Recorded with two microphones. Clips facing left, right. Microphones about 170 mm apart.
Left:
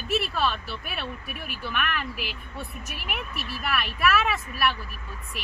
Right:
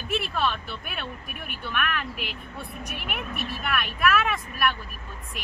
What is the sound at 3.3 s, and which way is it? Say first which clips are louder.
Speech: right 3 dB; 55° right (ahead or behind).